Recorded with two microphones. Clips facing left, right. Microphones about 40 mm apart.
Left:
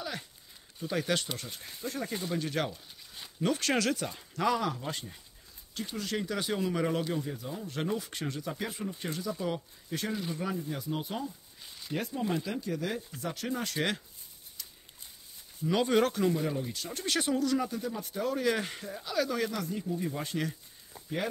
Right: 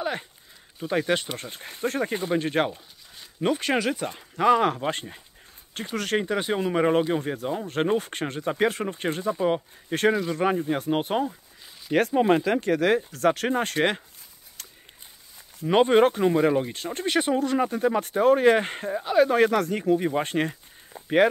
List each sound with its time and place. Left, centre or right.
0.7 s speech: right
3.3 s speech: right
4.0 s speech: right
6.2 s speech: right
7.2 s speech: right
10.4 s speech: right
14.6 s a sound: right
15.6 s speech: right
16.3 s speech: right
16.6 s speech: right
20.1 s speech: right
20.9 s a sound: right